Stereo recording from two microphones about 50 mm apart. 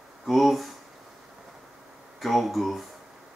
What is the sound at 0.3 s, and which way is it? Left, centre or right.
Speech, centre.